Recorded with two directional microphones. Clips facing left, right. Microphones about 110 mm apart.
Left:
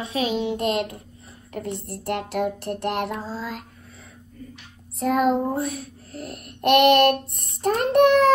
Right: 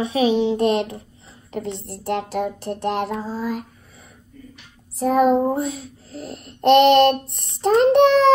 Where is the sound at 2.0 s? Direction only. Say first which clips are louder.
Right 2 dB; 60° left (ahead or behind).